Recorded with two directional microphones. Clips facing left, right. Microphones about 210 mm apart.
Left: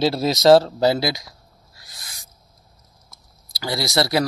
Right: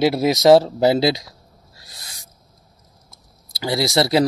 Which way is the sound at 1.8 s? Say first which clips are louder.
Right 1 dB; 30° right (ahead or behind).